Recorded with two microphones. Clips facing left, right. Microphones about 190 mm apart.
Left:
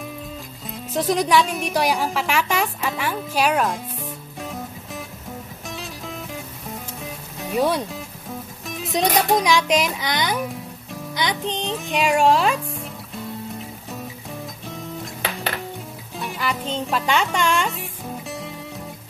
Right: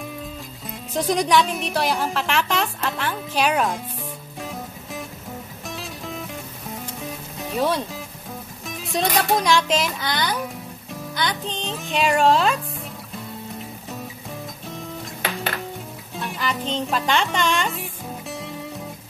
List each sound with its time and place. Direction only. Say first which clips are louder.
0.7 s speech: left 1 dB; centre (ahead or behind)
1.6 s speech: left 2 dB; 10° left (ahead or behind)
4.4 s music: left 1 dB; centre (ahead or behind)
8.9 s speech: left 2 dB; 15° left (ahead or behind)
11.1 s music: left 2 dB; 20° left (ahead or behind)
11.9 s speech: even; 10° left (ahead or behind)
16.2 s speech: even; 5° left (ahead or behind)